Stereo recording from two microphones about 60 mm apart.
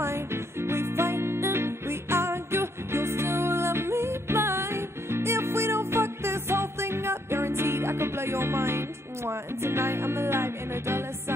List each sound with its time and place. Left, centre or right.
0.0 s music: right